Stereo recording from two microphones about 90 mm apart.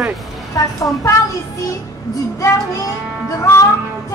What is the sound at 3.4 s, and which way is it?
Speech, 30° left (ahead or behind).